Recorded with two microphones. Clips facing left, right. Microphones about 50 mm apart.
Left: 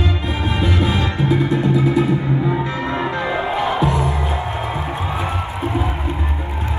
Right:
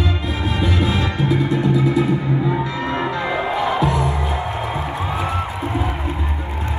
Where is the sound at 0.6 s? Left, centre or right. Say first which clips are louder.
Even; left.